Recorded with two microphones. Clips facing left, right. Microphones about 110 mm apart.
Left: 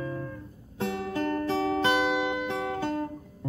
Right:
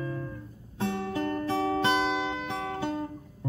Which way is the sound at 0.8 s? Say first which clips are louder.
Left 1 dB; 20° right (ahead or behind).